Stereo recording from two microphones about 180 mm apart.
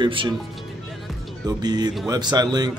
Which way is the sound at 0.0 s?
30° right (ahead or behind).